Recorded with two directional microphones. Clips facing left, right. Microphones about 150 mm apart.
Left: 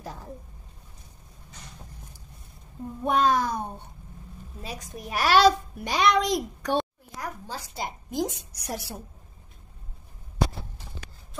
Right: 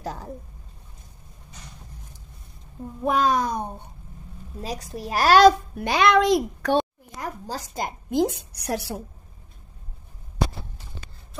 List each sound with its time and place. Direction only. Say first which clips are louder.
0.0 s a sound: right 6 dB; 85° right
3.0 s a child's voice: right 1 dB; 5° right (ahead or behind)
3.3 s a child's voice: right 2 dB; 20° right (ahead or behind)
4.6 s a child's voice: right 6 dB; 35° right (ahead or behind)
5.8 s a woman's voice: right 4 dB; 65° right (ahead or behind)
7.4 s a woman's voice: right 4 dB; 45° right (ahead or behind); by 8.8 s 65° right (ahead or behind)